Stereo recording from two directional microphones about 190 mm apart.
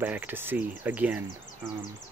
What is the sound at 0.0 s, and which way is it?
Speech, 10° right (ahead or behind).